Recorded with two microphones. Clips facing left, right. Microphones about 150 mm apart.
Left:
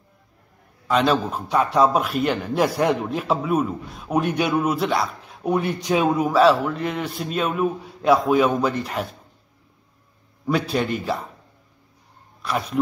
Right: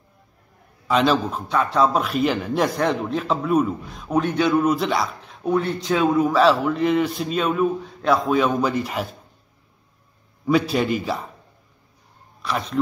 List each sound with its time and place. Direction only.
0.8 s a man's voice: centre (ahead or behind)
1.5 s speech: 15° left (ahead or behind)
2.0 s a man's voice: centre (ahead or behind)
5.4 s speech: 15° left (ahead or behind)
6.3 s a man's voice: centre (ahead or behind)
10.4 s a man's voice: centre (ahead or behind)
12.4 s speech: centre (ahead or behind)